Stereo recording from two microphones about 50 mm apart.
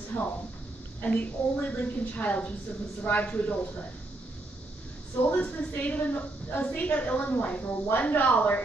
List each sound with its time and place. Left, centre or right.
0.1 s a woman's voice: left
1.0 s a woman's voice: left
5.2 s a woman's voice: left